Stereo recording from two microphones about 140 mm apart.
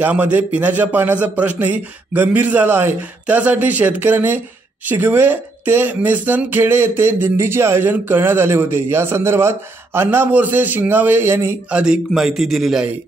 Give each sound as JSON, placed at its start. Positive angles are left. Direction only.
{"t": 0.0, "sound": "speech", "side_deg": -10}
{"t": 11.8, "sound": "a man's voice", "side_deg": -5}